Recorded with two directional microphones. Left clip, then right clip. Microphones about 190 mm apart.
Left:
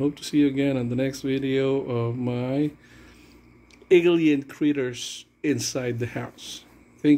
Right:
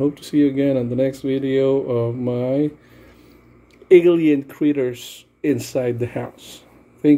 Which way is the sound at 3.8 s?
5° right (ahead or behind).